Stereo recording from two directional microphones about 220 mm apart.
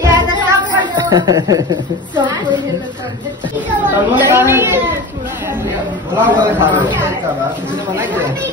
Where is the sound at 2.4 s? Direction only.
20° left (ahead or behind).